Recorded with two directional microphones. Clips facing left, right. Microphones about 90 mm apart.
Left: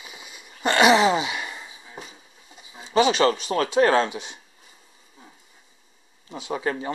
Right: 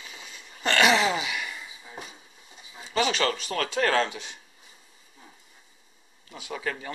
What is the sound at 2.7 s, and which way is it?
Speech, 20° left (ahead or behind).